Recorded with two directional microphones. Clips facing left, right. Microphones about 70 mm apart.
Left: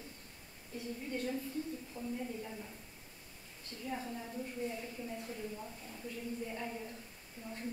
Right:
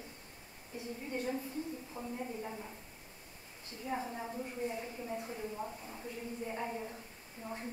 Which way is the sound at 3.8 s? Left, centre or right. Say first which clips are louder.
Right 3 dB; right.